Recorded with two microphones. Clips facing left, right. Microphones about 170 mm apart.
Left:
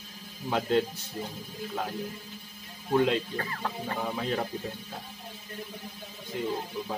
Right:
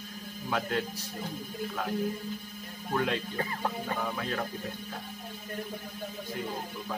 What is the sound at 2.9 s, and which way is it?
Speech, 20° left (ahead or behind).